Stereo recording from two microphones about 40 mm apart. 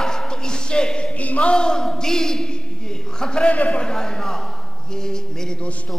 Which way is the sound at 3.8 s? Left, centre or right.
Centre.